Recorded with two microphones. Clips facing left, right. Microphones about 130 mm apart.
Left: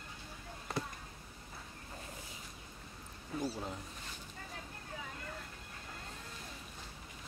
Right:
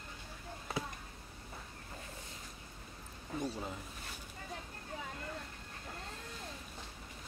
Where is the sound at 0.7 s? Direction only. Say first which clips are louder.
Even; centre (ahead or behind).